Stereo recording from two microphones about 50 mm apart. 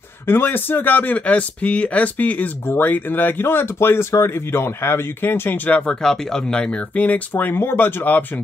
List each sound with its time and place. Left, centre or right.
0.3 s speech: left
2.7 s speech: left
5.7 s speech: left
6.0 s speech: centre
7.0 s speech: left